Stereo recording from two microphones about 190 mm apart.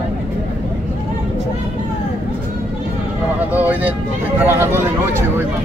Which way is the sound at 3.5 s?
10° right (ahead or behind).